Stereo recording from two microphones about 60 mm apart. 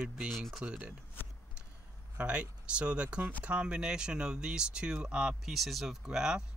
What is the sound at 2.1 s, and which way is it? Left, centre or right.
Speech, right.